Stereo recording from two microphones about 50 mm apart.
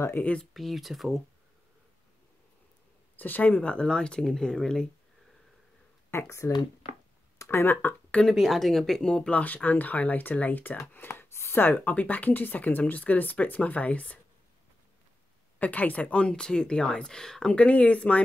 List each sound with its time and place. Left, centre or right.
0.2 s speech: left
0.5 s speech: centre
3.2 s speech: left; by 4.8 s centre
6.0 s speech: left
7.3 s a sound: left
7.6 s speech: left
8.3 s speech: centre
9.1 s speech: centre
9.4 s speech: left
10.9 s speech: left
11.7 s speech: left
15.6 s speech: left